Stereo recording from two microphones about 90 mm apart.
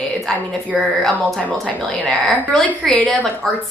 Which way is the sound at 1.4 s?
15° left (ahead or behind).